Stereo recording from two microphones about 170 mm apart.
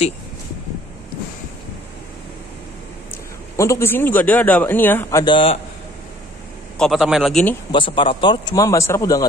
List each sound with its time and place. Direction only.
3.5 s a man's voice: 15° left (ahead or behind)
5.2 s a man's voice: 30° left (ahead or behind)
6.8 s a man's voice: centre (ahead or behind)
7.7 s a man's voice: 30° left (ahead or behind)